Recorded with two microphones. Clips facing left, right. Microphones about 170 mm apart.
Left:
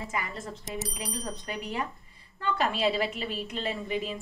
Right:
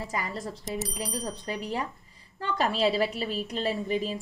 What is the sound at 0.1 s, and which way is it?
Speech, 35° right (ahead or behind).